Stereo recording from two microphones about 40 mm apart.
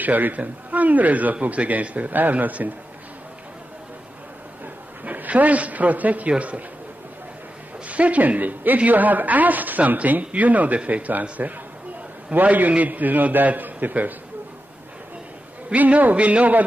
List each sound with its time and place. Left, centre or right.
0.0 s a man's voice: right
5.0 s a man's voice: right
7.9 s a woman's voice: right
12.4 s a woman's voice: right
15.7 s a man's voice: right